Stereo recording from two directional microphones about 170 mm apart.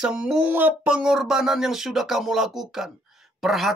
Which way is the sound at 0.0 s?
5° right (ahead or behind).